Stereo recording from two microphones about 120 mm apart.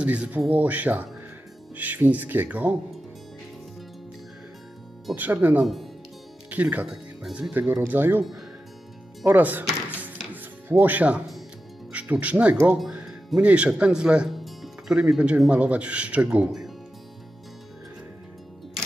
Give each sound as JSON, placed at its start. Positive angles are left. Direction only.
{"t": 0.0, "sound": "speech", "side_deg": -10}
{"t": 5.1, "sound": "speech", "side_deg": -15}
{"t": 7.2, "sound": "speech", "side_deg": 0}
{"t": 7.5, "sound": "speech", "side_deg": -15}
{"t": 9.2, "sound": "music", "side_deg": -15}
{"t": 11.9, "sound": "speech", "side_deg": -10}